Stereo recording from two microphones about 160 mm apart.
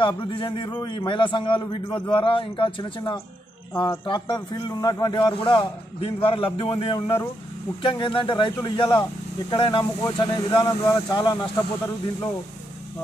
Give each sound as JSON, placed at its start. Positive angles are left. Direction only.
{"t": 0.0, "sound": "a man's voice", "side_deg": 30}